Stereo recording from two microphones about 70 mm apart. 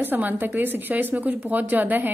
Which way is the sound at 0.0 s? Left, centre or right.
Right.